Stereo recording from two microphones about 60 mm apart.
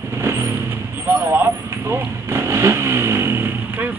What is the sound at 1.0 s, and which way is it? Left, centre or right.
Vehicle, right.